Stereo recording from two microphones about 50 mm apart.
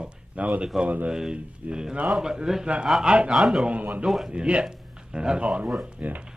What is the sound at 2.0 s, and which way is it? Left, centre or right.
Speech, centre.